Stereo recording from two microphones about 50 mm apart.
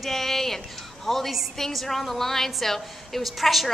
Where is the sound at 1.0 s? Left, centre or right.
Centre.